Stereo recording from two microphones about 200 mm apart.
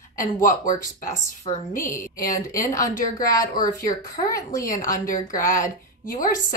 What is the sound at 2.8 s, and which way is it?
A woman's voice, 15° left (ahead or behind).